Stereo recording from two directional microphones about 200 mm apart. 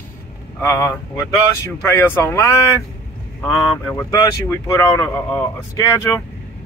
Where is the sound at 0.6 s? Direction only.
15° left (ahead or behind).